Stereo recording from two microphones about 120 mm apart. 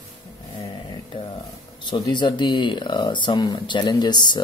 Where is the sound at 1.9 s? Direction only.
35° left (ahead or behind).